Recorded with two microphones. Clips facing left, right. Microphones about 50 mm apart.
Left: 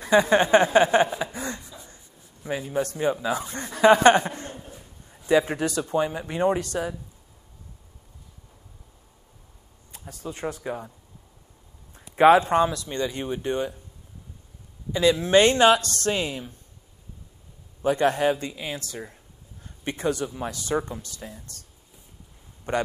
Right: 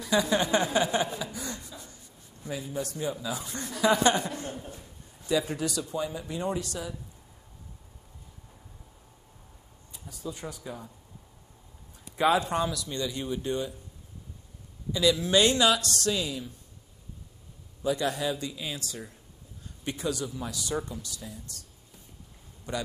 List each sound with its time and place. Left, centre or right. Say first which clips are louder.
0.0 s a man's voice: left 7 dB; left
1.0 s a sound: left 6 dB; left
2.6 s speech: left 8 dB; left
5.3 s speech: left 7 dB; left
9.9 s speech: left 3 dB; left
12.0 s a man's voice: left 9 dB; left
14.9 s a man's voice: left 4 dB; left
17.8 s a man's voice: left 7 dB; left
22.7 s speech: left 8 dB; left